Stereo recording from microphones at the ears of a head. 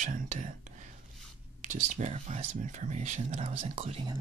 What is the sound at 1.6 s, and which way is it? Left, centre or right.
Speech, right.